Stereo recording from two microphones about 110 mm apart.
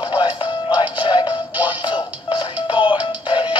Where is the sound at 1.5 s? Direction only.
15° right (ahead or behind).